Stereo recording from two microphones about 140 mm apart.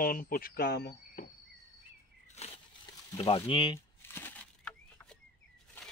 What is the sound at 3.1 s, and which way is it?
Speech, 40° left (ahead or behind).